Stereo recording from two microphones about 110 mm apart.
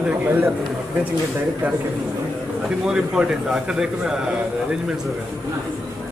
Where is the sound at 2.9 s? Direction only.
5° right (ahead or behind).